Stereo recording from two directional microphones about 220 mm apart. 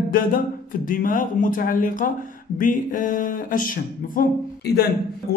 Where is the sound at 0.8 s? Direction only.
40° left (ahead or behind).